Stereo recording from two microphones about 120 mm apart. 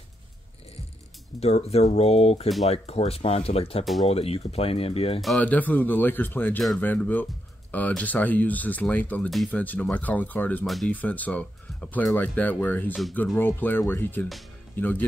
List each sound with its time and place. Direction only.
1.4 s speech: 60° left (ahead or behind)
3.8 s speech: centre (ahead or behind)
4.1 s speech: 55° left (ahead or behind)
5.4 s speech: 15° left (ahead or behind)